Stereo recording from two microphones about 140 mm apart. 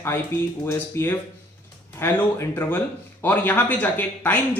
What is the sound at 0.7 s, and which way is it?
Speech, 20° left (ahead or behind).